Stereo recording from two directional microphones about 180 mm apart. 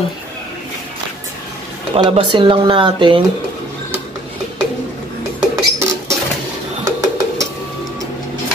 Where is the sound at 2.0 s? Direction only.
30° right (ahead or behind).